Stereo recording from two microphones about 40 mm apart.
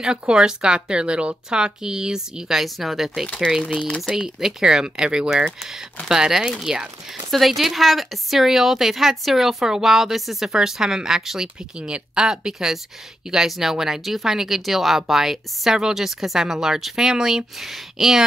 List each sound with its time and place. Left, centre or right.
0.0 s a woman's voice: right
7.2 s a woman's voice: centre